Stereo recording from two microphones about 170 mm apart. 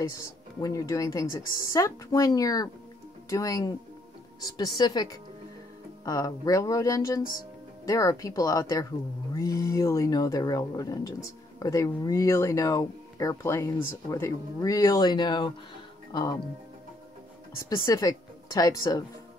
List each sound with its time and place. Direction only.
0.2 s speech: 20° left (ahead or behind)
17.6 s speech: 20° left (ahead or behind)